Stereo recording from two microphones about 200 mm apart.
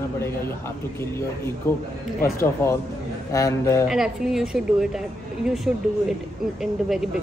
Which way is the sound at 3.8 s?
Centre (ahead or behind).